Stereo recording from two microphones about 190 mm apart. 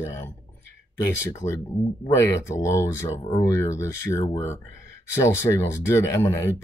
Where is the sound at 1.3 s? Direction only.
15° left (ahead or behind).